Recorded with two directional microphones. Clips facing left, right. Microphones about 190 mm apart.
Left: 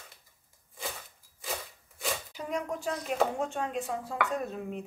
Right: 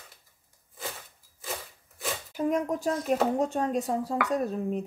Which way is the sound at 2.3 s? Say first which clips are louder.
Right 11 dB; 45° right (ahead or behind).